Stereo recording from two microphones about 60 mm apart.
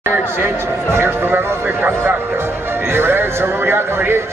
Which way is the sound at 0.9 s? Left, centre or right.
Right.